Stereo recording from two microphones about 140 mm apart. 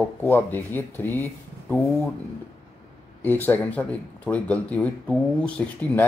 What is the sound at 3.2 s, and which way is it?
Speech, 15° left (ahead or behind).